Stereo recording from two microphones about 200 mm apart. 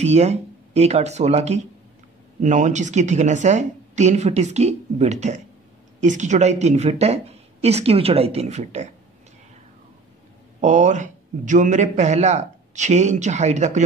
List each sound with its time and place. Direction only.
0.0 s speech: 35° right (ahead or behind)
10.6 s speech: 35° right (ahead or behind)